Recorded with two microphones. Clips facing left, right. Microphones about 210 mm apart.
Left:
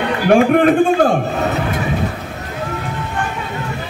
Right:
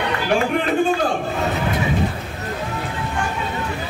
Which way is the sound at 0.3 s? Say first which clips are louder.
Left 10 dB; 55° left (ahead or behind).